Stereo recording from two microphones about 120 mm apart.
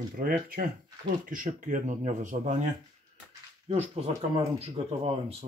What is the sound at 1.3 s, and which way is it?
Speech, 90° right.